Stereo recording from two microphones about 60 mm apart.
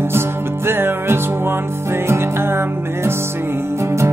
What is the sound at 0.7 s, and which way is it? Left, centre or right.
Music, right.